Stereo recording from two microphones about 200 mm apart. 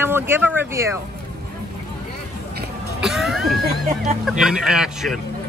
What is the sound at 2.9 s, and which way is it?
Cough, centre (ahead or behind).